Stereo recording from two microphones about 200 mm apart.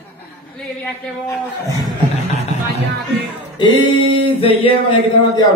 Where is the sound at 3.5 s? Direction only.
20° left (ahead or behind).